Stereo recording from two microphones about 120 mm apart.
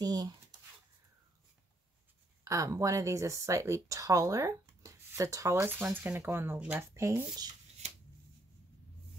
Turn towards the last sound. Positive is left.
turn(degrees=-20)  # may be behind; listen again after turning